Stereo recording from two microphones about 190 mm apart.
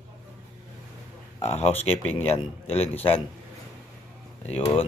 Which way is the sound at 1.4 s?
35° left (ahead or behind).